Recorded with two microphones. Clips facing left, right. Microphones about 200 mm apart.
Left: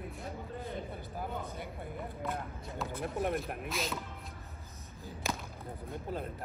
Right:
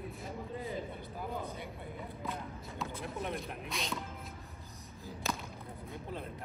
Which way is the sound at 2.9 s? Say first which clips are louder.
Left 7 dB; 55° left (ahead or behind).